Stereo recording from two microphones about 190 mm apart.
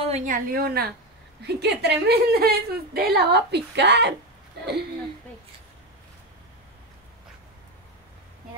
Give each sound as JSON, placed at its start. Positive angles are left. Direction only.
{"t": 0.0, "sound": "a woman's voice", "side_deg": -35}